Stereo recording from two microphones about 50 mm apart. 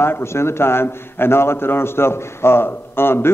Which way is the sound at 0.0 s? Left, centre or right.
Left.